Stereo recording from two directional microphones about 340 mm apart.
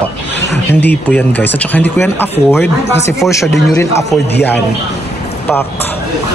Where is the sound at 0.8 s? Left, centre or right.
Centre.